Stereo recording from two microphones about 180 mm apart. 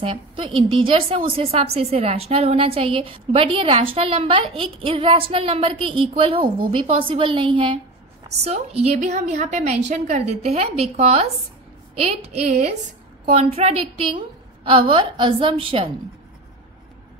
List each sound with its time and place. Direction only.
0.0 s a woman's voice: 25° right (ahead or behind)